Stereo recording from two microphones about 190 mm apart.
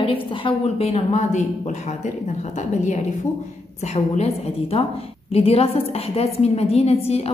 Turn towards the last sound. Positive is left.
turn(degrees=30)  # may be behind; listen again after turning